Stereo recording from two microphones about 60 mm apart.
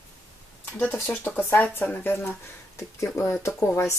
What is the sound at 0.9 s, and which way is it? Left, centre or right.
Speech, left.